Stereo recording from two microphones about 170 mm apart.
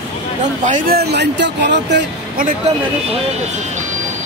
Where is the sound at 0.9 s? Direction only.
75° right (ahead or behind).